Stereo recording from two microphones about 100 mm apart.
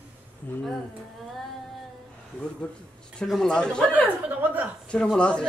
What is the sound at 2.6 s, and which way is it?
A man's voice, 15° left (ahead or behind).